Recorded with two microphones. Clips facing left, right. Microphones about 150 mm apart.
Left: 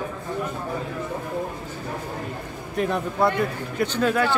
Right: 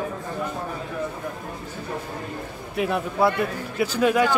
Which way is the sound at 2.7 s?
5° right (ahead or behind).